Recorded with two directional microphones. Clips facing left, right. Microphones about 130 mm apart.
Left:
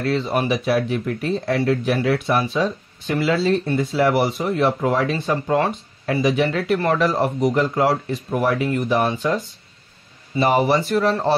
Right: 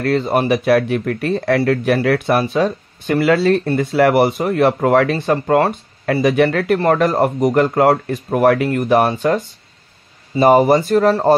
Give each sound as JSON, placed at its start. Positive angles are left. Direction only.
{"t": 0.0, "sound": "speech", "side_deg": -50}